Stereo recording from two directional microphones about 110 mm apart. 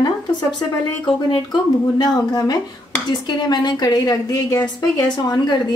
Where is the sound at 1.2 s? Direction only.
45° left (ahead or behind).